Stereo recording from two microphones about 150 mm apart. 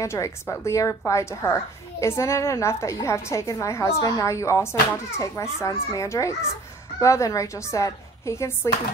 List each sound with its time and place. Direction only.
0.0 s a woman's voice: 20° left (ahead or behind)